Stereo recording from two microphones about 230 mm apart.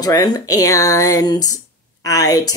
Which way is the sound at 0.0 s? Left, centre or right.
Centre.